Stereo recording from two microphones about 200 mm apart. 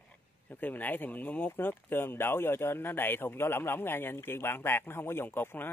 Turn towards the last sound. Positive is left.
turn(degrees=10)  # may be behind; listen again after turning